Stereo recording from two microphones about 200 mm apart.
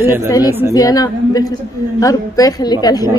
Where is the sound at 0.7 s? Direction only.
20° left (ahead or behind).